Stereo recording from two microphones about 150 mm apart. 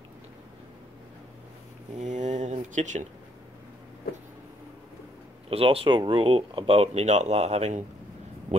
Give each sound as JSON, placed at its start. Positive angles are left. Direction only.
{"t": 2.0, "sound": "speech", "side_deg": -50}
{"t": 5.5, "sound": "speech", "side_deg": -40}